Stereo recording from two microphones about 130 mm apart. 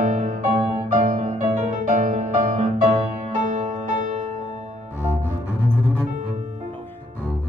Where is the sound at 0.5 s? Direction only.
50° right (ahead or behind).